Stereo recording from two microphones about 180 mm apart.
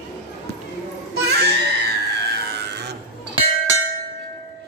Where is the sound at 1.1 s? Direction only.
65° right (ahead or behind).